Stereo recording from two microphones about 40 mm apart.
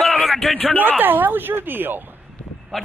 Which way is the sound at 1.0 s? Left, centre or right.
Right.